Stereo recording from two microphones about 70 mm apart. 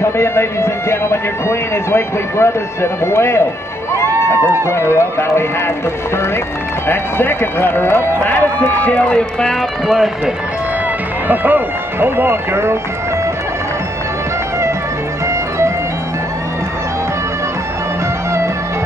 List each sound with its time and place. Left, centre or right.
0.0 s speech: left
6.9 s speech: left; by 10.3 s centre
11.2 s speech: right